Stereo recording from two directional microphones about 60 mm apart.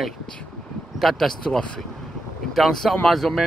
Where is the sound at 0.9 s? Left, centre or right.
Centre.